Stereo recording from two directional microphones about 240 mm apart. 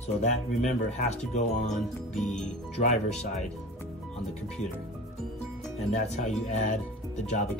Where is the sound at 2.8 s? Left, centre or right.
Left.